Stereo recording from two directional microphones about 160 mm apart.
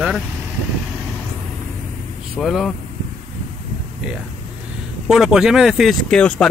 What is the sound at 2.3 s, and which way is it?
Speech, centre (ahead or behind).